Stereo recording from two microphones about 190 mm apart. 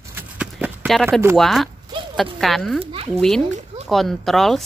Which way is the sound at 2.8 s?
30° right (ahead or behind).